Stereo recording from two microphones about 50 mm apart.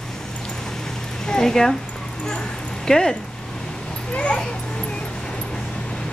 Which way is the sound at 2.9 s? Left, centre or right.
Centre.